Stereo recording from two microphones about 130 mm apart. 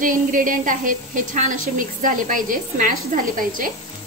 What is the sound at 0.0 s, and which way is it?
A woman's voice, 90° right.